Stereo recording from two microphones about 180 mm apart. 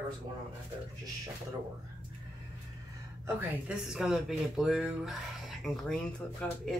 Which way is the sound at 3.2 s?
5° right (ahead or behind).